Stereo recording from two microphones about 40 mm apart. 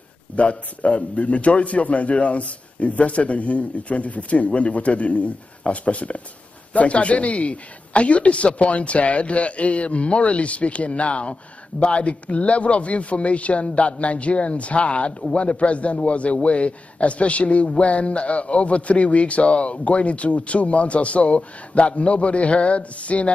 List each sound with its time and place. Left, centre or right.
0.4 s a man's voice: left